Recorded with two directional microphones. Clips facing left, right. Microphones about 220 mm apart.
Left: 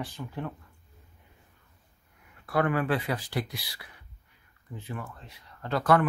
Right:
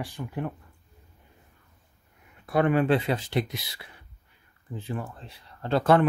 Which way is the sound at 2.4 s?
20° right (ahead or behind).